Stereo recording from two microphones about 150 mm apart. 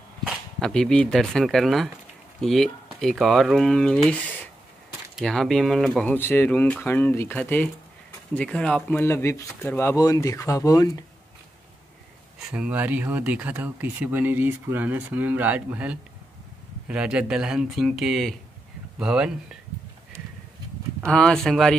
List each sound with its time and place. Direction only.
0.6 s speech: 5° left (ahead or behind)
6.1 s speech: 15° left (ahead or behind)
12.4 s speech: 10° right (ahead or behind)
21.0 s speech: 5° left (ahead or behind)